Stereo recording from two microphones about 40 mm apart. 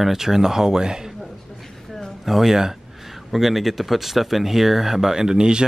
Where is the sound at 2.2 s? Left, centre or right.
Centre.